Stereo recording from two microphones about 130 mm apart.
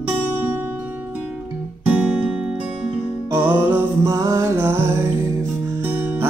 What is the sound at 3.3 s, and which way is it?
Music, 15° right (ahead or behind).